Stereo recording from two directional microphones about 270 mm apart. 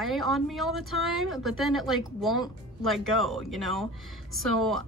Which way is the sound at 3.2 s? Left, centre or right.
Centre.